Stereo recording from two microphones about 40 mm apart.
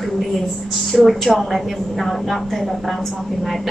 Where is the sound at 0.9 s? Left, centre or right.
Centre.